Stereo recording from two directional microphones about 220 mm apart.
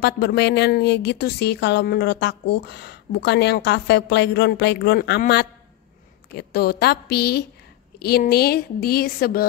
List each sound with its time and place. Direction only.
0.0 s speech: 50° left (ahead or behind)